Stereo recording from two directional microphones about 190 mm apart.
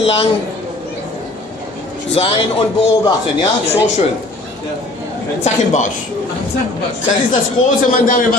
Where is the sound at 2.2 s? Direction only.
30° left (ahead or behind).